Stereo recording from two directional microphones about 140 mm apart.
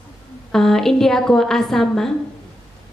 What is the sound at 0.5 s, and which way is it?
A woman's voice, 5° left (ahead or behind).